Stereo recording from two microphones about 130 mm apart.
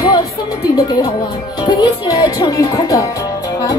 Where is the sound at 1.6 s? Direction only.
30° left (ahead or behind).